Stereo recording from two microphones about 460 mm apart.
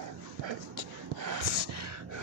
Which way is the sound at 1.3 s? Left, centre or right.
Right.